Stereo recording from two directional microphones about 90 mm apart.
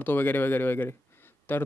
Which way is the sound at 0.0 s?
20° left (ahead or behind).